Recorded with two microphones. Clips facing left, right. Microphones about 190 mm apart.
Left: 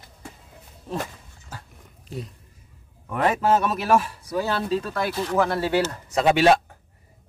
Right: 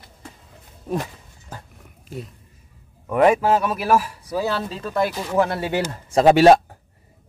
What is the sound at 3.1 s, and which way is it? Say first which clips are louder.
Speech: right 5 dB; 15° right (ahead or behind).